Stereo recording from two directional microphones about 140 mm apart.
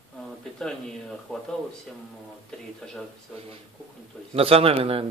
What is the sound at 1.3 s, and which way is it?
Speech, 5° left (ahead or behind).